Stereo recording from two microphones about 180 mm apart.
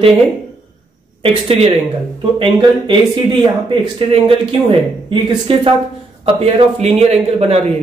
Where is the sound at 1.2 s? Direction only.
35° right (ahead or behind).